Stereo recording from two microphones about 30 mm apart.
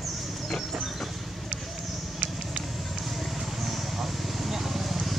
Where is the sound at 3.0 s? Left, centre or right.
Centre.